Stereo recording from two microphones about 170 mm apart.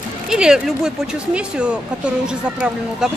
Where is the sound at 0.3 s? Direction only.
5° right (ahead or behind).